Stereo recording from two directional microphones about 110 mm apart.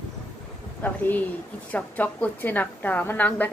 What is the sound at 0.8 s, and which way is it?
A woman's voice, 15° left (ahead or behind).